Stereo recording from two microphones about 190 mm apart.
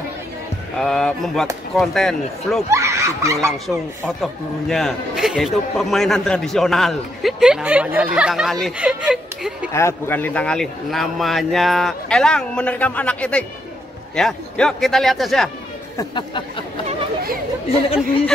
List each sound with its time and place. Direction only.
0.7 s a man's voice: centre (ahead or behind)
2.7 s speech: 15° right (ahead or behind)
3.3 s a man's voice: centre (ahead or behind)
9.7 s a man's voice: 15° left (ahead or behind)
16.0 s speech: 25° left (ahead or behind)